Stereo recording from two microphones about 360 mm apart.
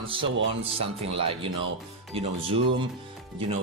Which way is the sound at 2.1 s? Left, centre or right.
Centre.